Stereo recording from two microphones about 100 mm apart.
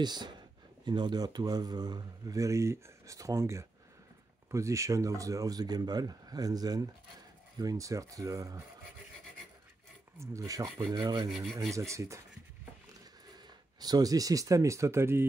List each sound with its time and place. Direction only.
0.0 s speech: 45° right (ahead or behind)
10.1 s speech: 30° right (ahead or behind)
11.2 s rub: centre (ahead or behind)
11.7 s speech: 30° right (ahead or behind)
13.3 s speech: 40° right (ahead or behind); by 15.2 s 25° right (ahead or behind)